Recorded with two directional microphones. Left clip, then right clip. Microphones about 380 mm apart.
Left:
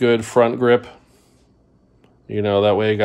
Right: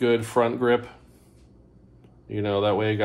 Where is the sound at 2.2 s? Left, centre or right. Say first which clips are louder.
Left 7 dB; left.